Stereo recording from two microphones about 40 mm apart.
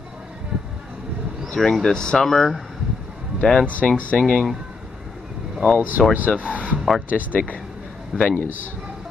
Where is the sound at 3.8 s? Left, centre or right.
Left.